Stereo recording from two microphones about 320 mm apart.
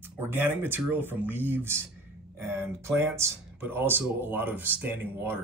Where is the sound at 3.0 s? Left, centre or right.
Centre.